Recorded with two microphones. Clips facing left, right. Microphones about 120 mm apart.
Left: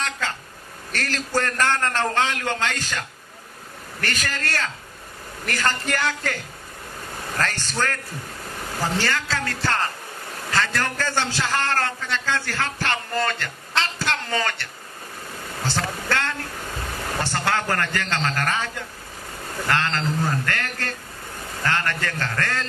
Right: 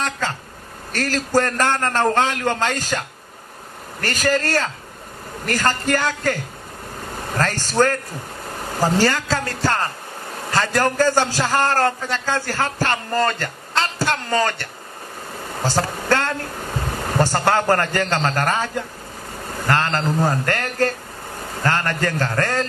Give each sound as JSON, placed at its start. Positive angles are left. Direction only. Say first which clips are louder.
{"t": 0.0, "sound": "a man's voice", "louder": "right 4 dB", "side_deg": -40}
{"t": 7.3, "sound": "a man's voice", "louder": "right 7 dB", "side_deg": -40}
{"t": 15.6, "sound": "a sound", "louder": "right 5 dB", "side_deg": -40}
{"t": 17.2, "sound": "a man's voice", "louder": "right 7 dB", "side_deg": -40}
{"t": 19.7, "sound": "a man's voice", "louder": "right 4 dB", "side_deg": -40}